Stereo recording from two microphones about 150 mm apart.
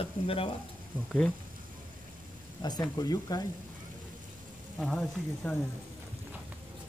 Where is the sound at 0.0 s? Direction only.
40° left (ahead or behind).